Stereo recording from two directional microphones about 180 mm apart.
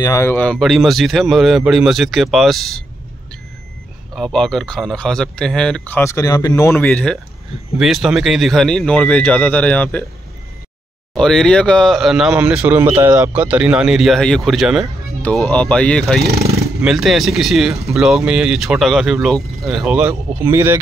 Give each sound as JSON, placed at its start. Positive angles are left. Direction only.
{"t": 0.0, "sound": "speech", "side_deg": 15}
{"t": 4.1, "sound": "speech", "side_deg": 0}
{"t": 11.1, "sound": "speech", "side_deg": 5}